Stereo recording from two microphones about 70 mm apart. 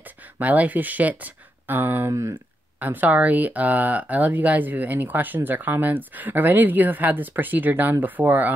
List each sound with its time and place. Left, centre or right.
0.0 s speech: right
2.0 s speech: right
2.8 s speech: right